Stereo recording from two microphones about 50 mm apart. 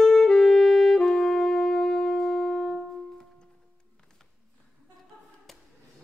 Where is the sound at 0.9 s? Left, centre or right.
Centre.